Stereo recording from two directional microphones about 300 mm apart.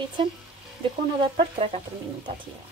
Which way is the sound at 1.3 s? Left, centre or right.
Centre.